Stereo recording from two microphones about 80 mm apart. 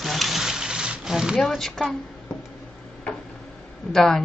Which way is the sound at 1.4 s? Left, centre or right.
Centre.